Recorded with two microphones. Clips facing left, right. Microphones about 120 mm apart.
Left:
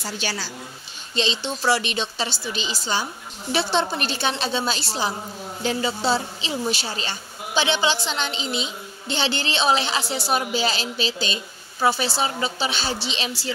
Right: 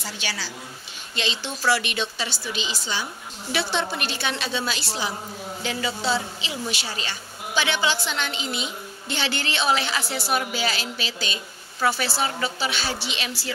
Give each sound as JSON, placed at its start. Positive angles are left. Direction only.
{"t": 0.0, "sound": "a woman's voice", "side_deg": 40}
{"t": 1.1, "sound": "a woman's voice", "side_deg": 25}